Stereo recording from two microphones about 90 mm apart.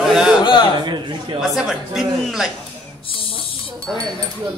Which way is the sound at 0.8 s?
55° right (ahead or behind).